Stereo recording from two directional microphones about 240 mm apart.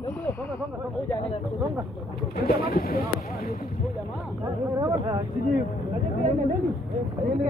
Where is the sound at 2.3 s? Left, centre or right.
Left.